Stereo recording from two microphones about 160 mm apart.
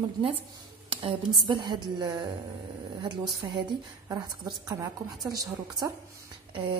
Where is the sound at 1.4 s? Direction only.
30° right (ahead or behind).